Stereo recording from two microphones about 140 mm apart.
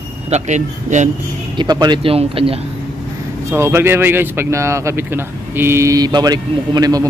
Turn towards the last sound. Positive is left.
turn(degrees=-25)  # may be behind; listen again after turning